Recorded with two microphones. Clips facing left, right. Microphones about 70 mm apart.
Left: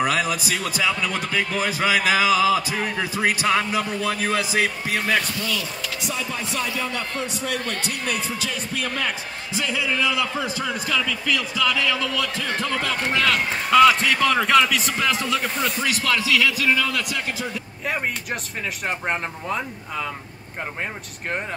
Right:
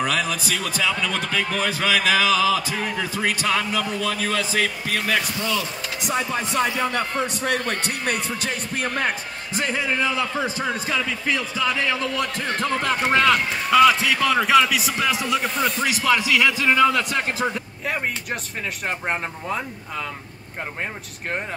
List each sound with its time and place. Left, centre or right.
0.0 s a man's voice: centre
5.4 s a man's voice: right
6.1 s speech: right
8.8 s a man's voice: right
13.7 s a man's voice: centre
15.6 s a man's voice: centre
17.8 s a man's voice: centre